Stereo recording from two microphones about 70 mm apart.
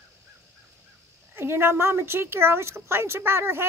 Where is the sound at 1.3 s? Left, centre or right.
Right.